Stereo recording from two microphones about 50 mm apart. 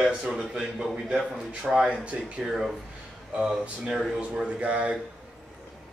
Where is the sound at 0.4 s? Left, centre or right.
Centre.